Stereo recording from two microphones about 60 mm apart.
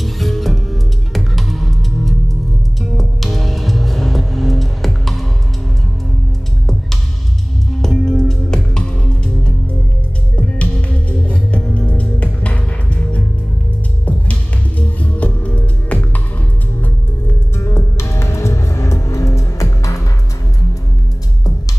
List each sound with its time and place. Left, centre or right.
0.0 s music: centre
7.8 s music: centre
14.8 s music: left
17.3 s music: left